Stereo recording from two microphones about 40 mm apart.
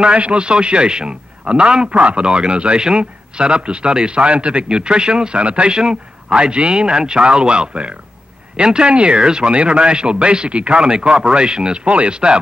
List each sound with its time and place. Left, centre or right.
0.0 s a man's voice: right